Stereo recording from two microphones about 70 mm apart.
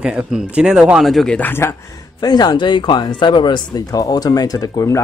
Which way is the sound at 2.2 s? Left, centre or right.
Left.